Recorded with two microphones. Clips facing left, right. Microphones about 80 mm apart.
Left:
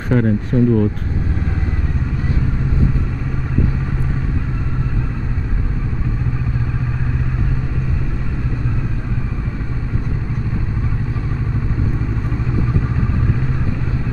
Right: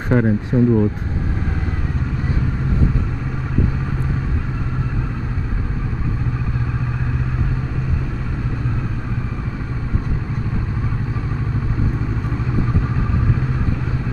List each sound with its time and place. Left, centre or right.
0.1 s speech: centre